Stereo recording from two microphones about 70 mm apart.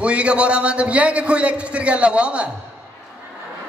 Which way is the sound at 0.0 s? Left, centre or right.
Centre.